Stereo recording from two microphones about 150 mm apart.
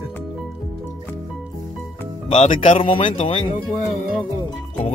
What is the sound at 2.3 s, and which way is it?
Speech, 45° left (ahead or behind).